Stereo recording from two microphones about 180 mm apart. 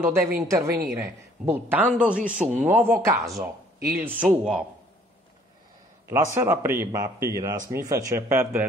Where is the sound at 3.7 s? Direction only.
55° right (ahead or behind).